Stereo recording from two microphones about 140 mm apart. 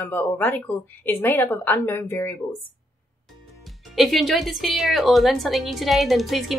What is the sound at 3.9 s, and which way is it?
A woman's voice, centre (ahead or behind).